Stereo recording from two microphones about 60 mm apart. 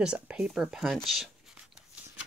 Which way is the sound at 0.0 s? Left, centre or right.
Centre.